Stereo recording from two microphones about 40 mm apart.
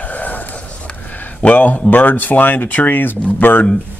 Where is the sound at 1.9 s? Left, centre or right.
Left.